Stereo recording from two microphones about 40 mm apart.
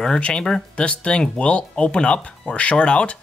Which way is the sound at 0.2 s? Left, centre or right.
Left.